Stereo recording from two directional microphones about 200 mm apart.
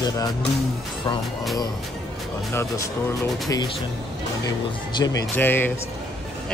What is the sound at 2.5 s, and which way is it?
Speech, 15° left (ahead or behind).